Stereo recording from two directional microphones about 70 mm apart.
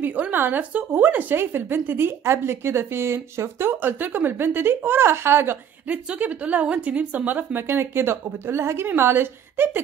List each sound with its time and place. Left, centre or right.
0.0 s a woman's voice: right
5.9 s a woman's voice: right